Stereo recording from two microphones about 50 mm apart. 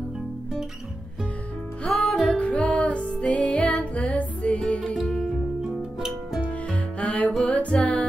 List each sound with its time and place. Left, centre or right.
1.9 s music: left
5.6 s music: centre
6.7 s music: left